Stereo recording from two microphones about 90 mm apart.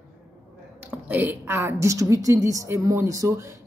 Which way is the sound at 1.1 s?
20° right (ahead or behind).